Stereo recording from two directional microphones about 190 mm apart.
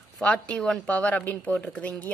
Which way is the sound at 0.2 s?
5° left (ahead or behind).